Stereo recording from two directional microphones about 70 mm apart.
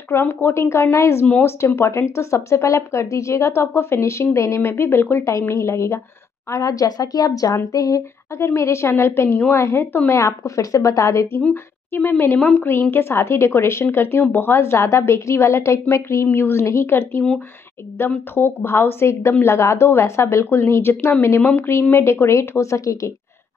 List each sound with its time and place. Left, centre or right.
0.1 s a woman's voice: left
6.5 s speech: left
8.5 s a woman's voice: left
11.5 s a woman's voice: left
12.4 s a woman's voice: centre
12.9 s a woman's voice: left
16.3 s a woman's voice: left